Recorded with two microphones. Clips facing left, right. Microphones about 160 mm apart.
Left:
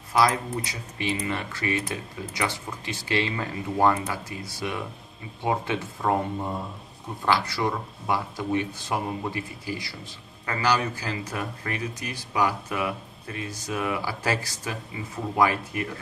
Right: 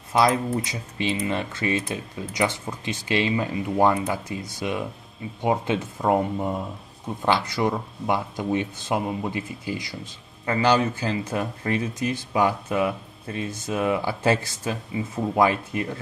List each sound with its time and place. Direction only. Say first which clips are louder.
0.1 s speech: right 2 dB; 20° right (ahead or behind)
7.2 s speech: right 2 dB; 20° right (ahead or behind)